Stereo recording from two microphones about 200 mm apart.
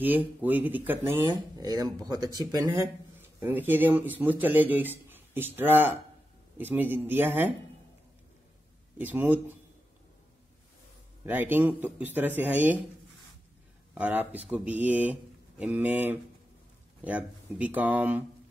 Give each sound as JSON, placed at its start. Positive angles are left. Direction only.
{"t": 0.0, "sound": "a man's voice", "side_deg": -10}
{"t": 8.9, "sound": "a man's voice", "side_deg": -10}
{"t": 11.2, "sound": "a man's voice", "side_deg": -10}
{"t": 13.9, "sound": "a man's voice", "side_deg": -10}